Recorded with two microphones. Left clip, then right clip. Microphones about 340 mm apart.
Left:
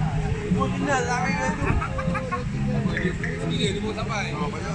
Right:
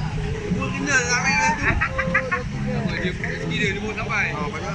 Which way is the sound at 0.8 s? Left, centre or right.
Left.